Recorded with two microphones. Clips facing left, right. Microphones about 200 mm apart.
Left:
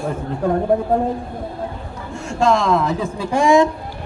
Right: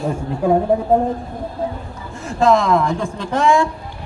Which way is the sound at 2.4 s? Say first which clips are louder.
Right 2 dB; centre (ahead or behind).